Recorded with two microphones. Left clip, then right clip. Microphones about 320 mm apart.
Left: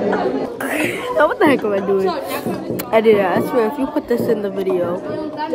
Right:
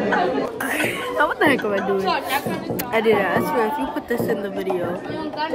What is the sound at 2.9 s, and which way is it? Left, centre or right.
A woman's voice, centre.